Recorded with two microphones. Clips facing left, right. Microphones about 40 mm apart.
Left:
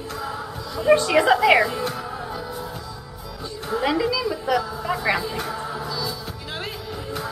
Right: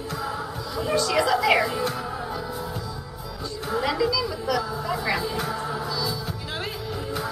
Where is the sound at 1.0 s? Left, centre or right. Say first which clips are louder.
Left 5 dB; left.